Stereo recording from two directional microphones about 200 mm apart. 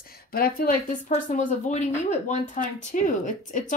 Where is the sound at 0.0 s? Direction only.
50° left (ahead or behind).